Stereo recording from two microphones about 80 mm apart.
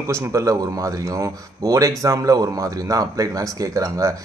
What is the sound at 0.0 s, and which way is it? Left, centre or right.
Speech, right.